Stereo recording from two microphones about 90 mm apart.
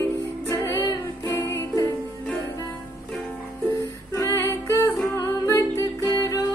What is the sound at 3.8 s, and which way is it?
Music, 35° left (ahead or behind).